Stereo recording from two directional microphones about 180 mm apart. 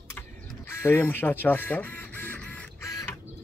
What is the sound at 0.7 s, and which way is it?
Printer, 15° left (ahead or behind).